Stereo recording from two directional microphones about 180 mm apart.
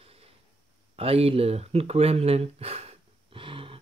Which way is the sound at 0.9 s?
35° right (ahead or behind).